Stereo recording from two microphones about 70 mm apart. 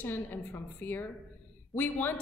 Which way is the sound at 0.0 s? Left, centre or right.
Left.